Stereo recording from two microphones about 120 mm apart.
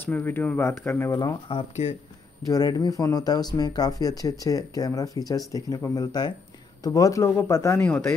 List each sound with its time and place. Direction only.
0.0 s speech: 15° left (ahead or behind)
1.5 s speech: 50° left (ahead or behind)
2.4 s speech: 30° left (ahead or behind)
7.8 s speech: 5° left (ahead or behind)